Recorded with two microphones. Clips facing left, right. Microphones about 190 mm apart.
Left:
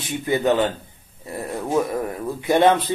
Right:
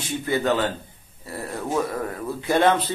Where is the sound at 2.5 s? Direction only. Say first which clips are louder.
Left 3 dB; 15° left (ahead or behind).